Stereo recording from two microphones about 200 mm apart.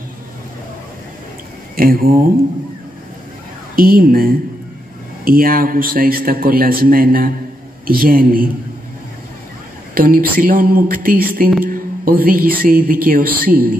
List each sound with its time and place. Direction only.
1.8 s a man's voice: 45° right (ahead or behind)
3.7 s a man's voice: 45° right (ahead or behind)
9.9 s a man's voice: 45° right (ahead or behind)